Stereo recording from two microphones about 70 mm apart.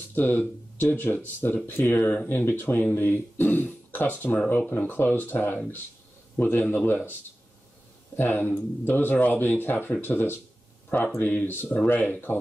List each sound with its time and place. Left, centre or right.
0.1 s speech: left
8.2 s speech: left
11.1 s speech: left